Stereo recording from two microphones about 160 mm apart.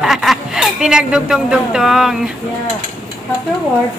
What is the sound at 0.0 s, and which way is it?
Speech, centre (ahead or behind).